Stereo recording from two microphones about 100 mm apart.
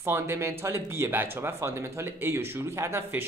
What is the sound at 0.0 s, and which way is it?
Speech, 25° right (ahead or behind).